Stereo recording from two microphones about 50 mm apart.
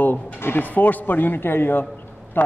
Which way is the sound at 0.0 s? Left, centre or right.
Left.